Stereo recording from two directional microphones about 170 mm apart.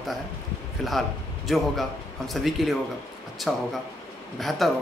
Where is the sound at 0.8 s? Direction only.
Centre (ahead or behind).